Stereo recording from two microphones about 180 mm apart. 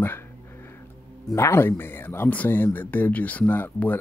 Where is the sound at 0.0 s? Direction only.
15° left (ahead or behind).